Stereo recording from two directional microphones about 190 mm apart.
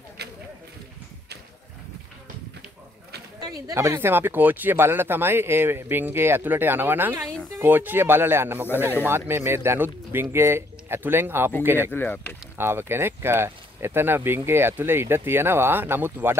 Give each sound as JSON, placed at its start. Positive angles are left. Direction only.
{"t": 0.2, "sound": "a sound", "side_deg": -60}
{"t": 3.3, "sound": "speech", "side_deg": -20}
{"t": 11.9, "sound": "speech", "side_deg": 10}
{"t": 12.5, "sound": "speech", "side_deg": -10}